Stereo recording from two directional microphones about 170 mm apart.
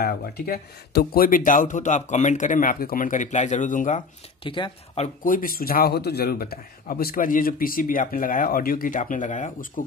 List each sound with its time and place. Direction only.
0.0 s speech: 60° left (ahead or behind)
4.4 s speech: 30° left (ahead or behind); by 9.8 s 50° left (ahead or behind)